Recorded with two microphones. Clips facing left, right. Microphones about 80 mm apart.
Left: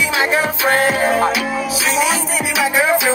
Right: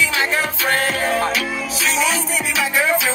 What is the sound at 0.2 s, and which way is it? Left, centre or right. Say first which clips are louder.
Music: left 4 dB; centre.